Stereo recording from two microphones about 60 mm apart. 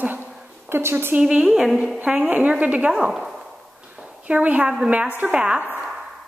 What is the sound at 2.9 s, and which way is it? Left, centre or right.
Speech, centre.